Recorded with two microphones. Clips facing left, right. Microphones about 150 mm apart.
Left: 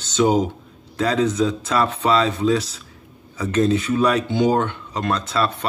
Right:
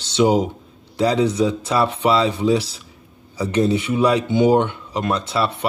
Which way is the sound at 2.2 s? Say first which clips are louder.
Right 1 dB; 30° right (ahead or behind).